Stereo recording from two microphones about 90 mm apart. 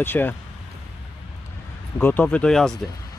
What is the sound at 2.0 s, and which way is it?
Speech, 20° left (ahead or behind).